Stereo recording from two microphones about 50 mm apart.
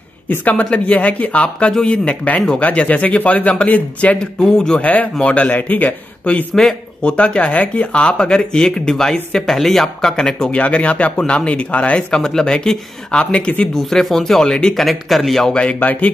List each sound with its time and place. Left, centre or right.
0.3 s speech: left
4.2 s speech: centre
4.8 s speech: left
6.5 s speech: centre
7.0 s speech: left
10.6 s speech: left
12.1 s speech: centre
13.7 s speech: centre
14.9 s speech: centre
15.5 s speech: centre
15.8 s speech: left